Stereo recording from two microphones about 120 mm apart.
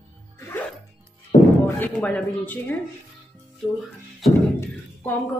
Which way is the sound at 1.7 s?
15° left (ahead or behind).